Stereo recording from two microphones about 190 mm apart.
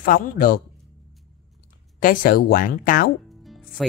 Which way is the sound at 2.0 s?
50° left (ahead or behind).